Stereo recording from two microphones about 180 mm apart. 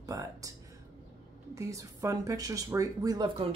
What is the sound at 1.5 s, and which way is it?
Speech, 15° right (ahead or behind).